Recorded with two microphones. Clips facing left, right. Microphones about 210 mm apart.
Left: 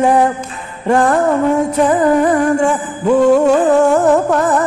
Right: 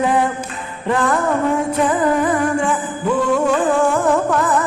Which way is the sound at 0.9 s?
45° left (ahead or behind).